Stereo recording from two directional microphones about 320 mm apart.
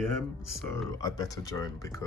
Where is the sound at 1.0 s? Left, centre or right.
Centre.